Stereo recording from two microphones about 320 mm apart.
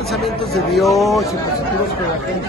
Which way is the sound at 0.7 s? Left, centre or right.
Centre.